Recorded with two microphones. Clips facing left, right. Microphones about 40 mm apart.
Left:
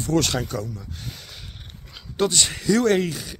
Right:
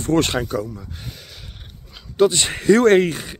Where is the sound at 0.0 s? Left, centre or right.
Right.